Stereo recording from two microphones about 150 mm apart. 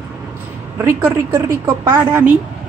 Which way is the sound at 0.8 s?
15° right (ahead or behind).